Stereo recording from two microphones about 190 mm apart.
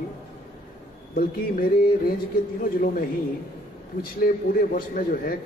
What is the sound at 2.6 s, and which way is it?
A man's voice, 50° left (ahead or behind).